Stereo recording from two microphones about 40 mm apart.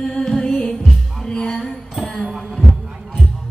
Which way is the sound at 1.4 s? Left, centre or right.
Centre.